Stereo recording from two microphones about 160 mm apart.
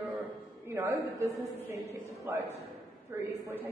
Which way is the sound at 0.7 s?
15° right (ahead or behind).